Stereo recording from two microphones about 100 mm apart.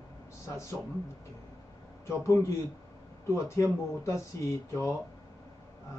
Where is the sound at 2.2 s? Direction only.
30° left (ahead or behind).